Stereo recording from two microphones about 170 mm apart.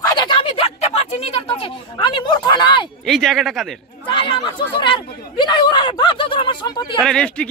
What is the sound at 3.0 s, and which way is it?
Speech, centre (ahead or behind).